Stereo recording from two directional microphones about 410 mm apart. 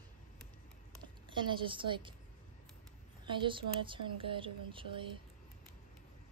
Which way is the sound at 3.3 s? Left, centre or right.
Centre.